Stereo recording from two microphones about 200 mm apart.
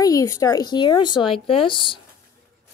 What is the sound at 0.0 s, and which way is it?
A woman's voice, 15° left (ahead or behind).